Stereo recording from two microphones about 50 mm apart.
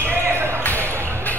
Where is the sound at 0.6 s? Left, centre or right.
Left.